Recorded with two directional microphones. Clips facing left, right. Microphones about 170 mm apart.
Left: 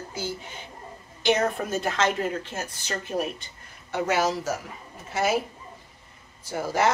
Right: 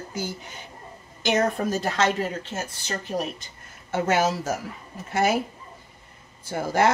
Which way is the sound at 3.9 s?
50° right (ahead or behind).